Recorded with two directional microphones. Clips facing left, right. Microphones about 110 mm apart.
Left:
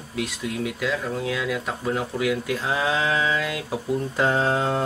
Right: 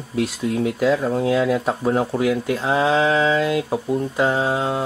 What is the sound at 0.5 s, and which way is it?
Speech, 45° right (ahead or behind).